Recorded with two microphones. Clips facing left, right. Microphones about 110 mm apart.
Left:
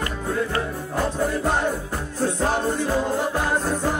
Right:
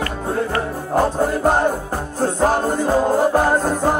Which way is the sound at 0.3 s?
40° right (ahead or behind).